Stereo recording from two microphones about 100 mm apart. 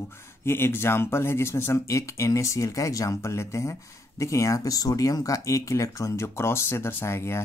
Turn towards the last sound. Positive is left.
turn(degrees=25)  # may be behind; listen again after turning